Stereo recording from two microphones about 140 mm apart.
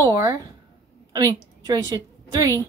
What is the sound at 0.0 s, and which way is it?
A woman's voice, 25° right (ahead or behind).